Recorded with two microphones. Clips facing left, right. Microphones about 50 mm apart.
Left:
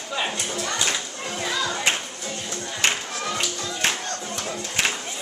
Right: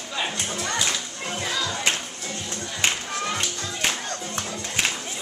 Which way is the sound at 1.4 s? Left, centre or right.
Centre.